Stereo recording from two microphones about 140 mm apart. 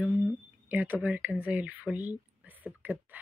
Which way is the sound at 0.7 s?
15° right (ahead or behind).